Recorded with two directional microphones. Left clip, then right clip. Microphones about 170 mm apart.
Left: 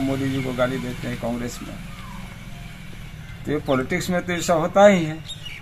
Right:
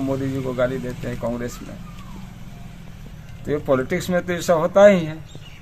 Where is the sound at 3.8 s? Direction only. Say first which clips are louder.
Right 2 dB; 30° right (ahead or behind).